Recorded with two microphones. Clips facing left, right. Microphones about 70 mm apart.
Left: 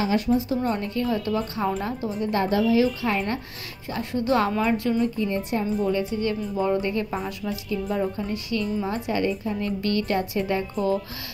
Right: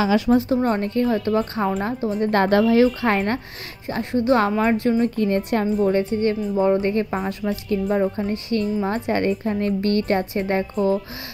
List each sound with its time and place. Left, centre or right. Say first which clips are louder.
0.3 s a woman's voice: right 5 dB; right
2.1 s a woman's voice: right 6 dB; right
3.9 s a woman's voice: right 4 dB; right
5.9 s a woman's voice: right 5 dB; right